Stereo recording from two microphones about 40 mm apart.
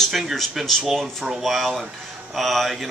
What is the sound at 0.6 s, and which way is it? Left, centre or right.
Speech, centre.